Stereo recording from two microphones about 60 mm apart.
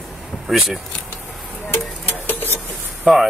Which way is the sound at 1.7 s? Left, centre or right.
Left.